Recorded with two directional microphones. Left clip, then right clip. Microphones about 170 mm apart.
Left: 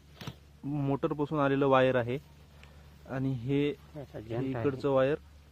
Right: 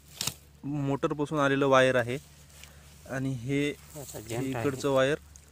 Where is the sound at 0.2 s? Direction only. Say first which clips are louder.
Right 8 dB; 10° right (ahead or behind).